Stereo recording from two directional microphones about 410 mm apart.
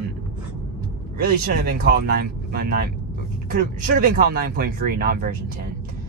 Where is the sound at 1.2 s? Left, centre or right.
Right.